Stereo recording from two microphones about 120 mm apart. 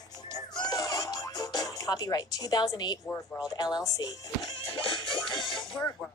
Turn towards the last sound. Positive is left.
turn(degrees=45)  # may be behind; listen again after turning